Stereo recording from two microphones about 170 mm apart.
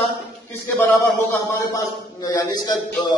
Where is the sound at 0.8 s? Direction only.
10° left (ahead or behind).